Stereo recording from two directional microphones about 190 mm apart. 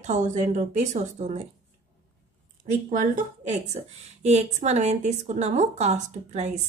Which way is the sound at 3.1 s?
35° right (ahead or behind).